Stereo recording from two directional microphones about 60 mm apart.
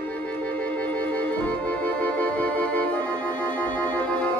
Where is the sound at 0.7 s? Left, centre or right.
Left.